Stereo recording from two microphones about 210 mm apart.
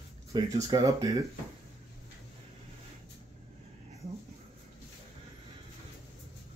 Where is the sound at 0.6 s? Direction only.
15° right (ahead or behind).